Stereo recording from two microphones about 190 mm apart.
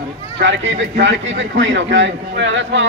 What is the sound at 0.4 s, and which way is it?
A man's voice, 75° right (ahead or behind).